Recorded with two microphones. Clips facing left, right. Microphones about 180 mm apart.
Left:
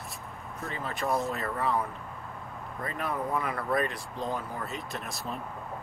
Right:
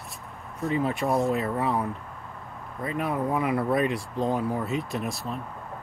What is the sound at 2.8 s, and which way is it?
Speech, centre (ahead or behind).